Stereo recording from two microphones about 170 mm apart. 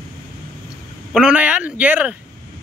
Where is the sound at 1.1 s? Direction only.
5° right (ahead or behind).